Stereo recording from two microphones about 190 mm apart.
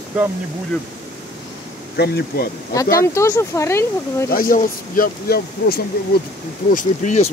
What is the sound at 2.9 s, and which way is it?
Speech, 15° left (ahead or behind).